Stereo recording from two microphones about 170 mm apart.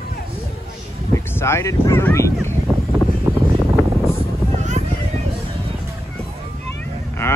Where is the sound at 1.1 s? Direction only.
15° left (ahead or behind).